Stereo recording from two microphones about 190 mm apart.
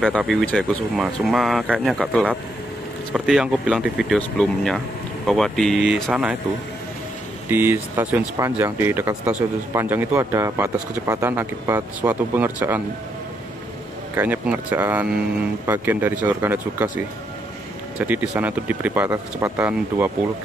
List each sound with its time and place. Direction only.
0.2 s speech: centre (ahead or behind)
7.4 s speech: 10° right (ahead or behind)
14.1 s speech: 10° right (ahead or behind)
17.9 s speech: 5° right (ahead or behind)